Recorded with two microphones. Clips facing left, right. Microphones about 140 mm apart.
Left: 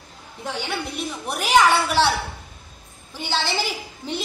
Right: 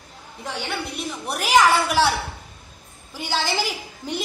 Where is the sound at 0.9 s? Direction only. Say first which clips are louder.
Even; centre (ahead or behind).